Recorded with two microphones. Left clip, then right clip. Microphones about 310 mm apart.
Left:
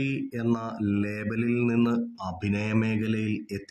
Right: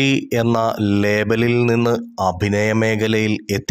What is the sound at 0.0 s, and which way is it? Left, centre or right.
Speech, right.